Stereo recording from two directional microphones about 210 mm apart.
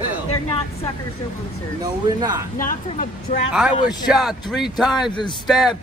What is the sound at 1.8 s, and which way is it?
Speech, 20° right (ahead or behind).